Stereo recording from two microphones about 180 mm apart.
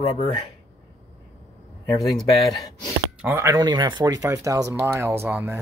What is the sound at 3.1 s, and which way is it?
Speech, 10° right (ahead or behind).